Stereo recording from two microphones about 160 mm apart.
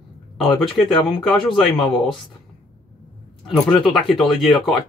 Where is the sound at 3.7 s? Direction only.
Centre (ahead or behind).